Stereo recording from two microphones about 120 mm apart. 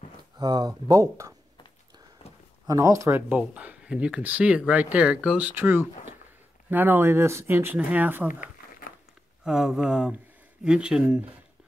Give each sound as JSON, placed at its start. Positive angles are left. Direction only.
{"t": 0.4, "sound": "speech", "side_deg": -35}
{"t": 2.6, "sound": "speech", "side_deg": -30}
{"t": 9.4, "sound": "speech", "side_deg": -5}